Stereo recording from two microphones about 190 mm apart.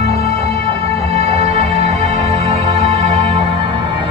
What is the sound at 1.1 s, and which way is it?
Music, 35° right (ahead or behind).